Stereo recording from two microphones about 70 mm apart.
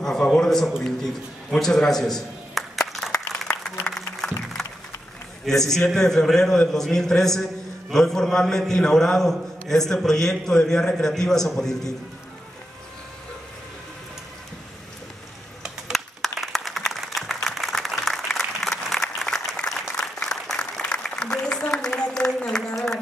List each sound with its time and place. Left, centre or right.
0.0 s a sound: centre
1.6 s a man's voice: centre
3.1 s applause: centre
3.8 s music: centre
5.4 s a man's voice: centre
15.9 s a sound: centre